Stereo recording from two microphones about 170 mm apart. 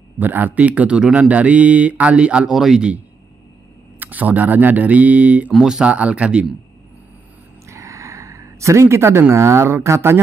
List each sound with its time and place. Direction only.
0.2 s speech: 10° right (ahead or behind)
4.0 s speech: 10° right (ahead or behind)
7.6 s speech: 20° right (ahead or behind)